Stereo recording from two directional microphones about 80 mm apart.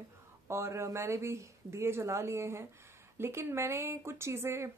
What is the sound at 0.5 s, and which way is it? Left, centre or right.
Speech, right.